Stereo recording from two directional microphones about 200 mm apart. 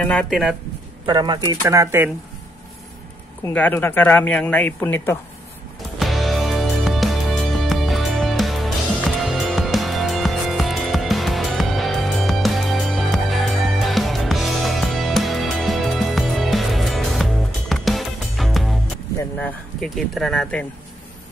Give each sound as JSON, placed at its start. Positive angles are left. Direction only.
{"t": 0.0, "sound": "speech", "side_deg": 5}
{"t": 1.0, "sound": "a man's voice", "side_deg": -20}
{"t": 3.4, "sound": "speech", "side_deg": 10}
{"t": 5.9, "sound": "music", "side_deg": 0}
{"t": 19.3, "sound": "speech", "side_deg": 5}